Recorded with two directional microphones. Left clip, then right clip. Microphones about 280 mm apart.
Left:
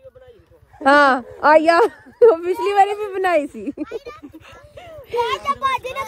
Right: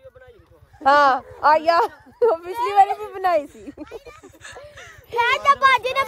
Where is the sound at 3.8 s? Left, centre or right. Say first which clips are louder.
Left 7 dB; centre.